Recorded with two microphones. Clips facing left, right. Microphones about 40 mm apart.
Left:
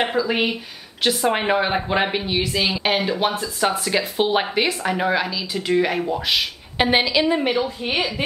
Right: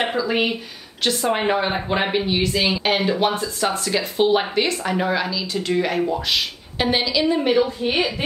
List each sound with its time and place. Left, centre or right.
0.2 s a woman's voice: centre
6.8 s a woman's voice: left